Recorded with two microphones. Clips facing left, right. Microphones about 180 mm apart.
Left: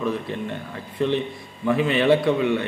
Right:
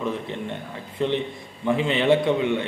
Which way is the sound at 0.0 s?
20° right (ahead or behind).